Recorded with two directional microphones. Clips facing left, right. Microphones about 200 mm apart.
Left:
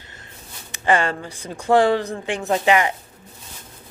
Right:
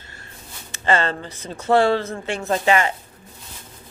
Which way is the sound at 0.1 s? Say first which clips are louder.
Right 1 dB; 15° left (ahead or behind).